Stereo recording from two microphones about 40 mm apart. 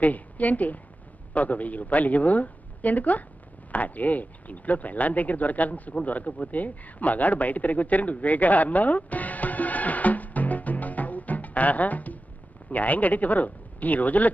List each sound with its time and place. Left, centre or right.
0.0 s a woman's voice: left